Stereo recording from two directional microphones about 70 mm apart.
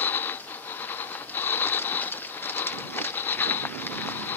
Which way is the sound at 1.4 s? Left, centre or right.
Left.